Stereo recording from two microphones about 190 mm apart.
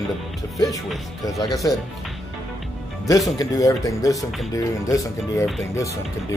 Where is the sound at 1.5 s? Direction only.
20° left (ahead or behind).